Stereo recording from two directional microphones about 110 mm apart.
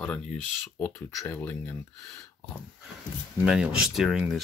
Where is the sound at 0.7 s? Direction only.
20° left (ahead or behind).